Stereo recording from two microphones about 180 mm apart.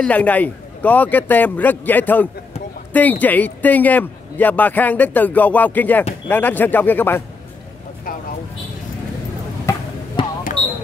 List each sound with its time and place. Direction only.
0.0 s a man's voice: 5° left (ahead or behind)
9.7 s basketball bounce: 15° left (ahead or behind)
10.2 s basketball bounce: 30° left (ahead or behind)